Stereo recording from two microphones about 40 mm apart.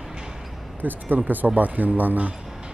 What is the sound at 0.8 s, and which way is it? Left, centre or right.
Speech, right.